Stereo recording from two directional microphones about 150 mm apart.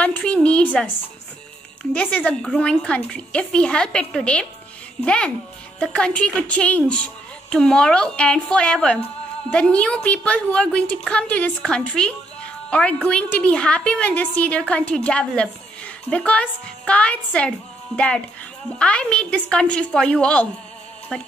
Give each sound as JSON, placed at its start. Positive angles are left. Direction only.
{"t": 0.0, "sound": "a sound", "side_deg": 10}
{"t": 2.0, "sound": "a woman's voice", "side_deg": 10}
{"t": 21.1, "sound": "music", "side_deg": 5}